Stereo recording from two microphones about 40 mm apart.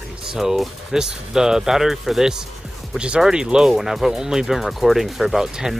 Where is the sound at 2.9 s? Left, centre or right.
Right.